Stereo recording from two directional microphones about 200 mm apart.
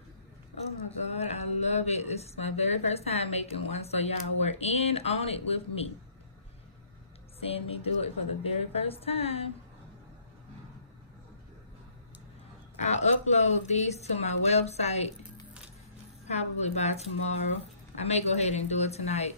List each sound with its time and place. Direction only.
1.1 s a woman's voice: 35° left (ahead or behind)
7.3 s a woman's voice: 30° left (ahead or behind)
12.7 s a woman's voice: 35° left (ahead or behind)
16.3 s a woman's voice: 35° left (ahead or behind)